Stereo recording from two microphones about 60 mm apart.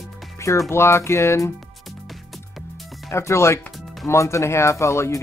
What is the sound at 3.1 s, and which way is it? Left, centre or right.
Speech, left.